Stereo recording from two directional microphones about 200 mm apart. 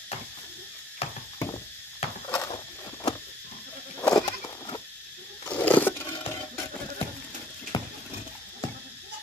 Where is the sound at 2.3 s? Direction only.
20° left (ahead or behind).